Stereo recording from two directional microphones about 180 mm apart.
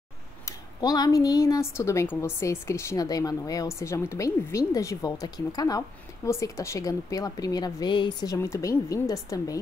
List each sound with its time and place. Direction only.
0.5 s a woman's voice: 20° left (ahead or behind)